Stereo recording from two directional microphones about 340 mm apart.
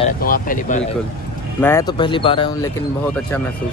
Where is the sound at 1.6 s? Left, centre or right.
Centre.